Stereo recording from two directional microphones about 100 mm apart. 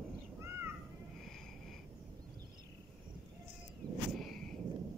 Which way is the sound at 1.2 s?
Centre (ahead or behind).